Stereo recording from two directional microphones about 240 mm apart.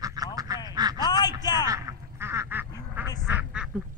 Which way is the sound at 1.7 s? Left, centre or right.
Centre.